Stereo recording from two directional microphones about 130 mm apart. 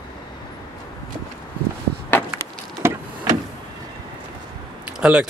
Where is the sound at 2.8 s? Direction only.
20° right (ahead or behind).